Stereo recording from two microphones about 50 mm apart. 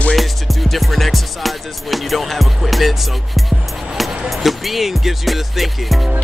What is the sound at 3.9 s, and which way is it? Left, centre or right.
Music, centre.